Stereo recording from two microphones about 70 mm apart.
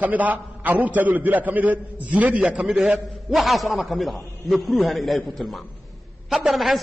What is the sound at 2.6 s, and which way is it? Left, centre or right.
A man's voice, centre.